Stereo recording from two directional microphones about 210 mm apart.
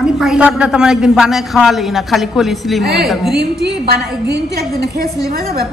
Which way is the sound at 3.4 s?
50° right (ahead or behind).